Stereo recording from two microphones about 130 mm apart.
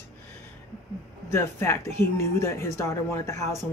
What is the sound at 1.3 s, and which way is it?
Speech, 20° left (ahead or behind).